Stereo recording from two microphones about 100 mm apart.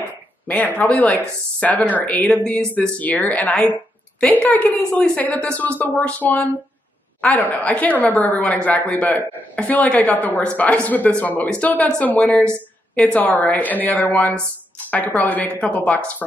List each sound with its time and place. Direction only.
0.5 s a woman's voice: 15° left (ahead or behind)